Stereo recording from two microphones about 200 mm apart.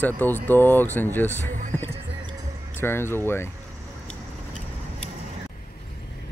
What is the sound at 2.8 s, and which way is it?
Speech, 10° left (ahead or behind).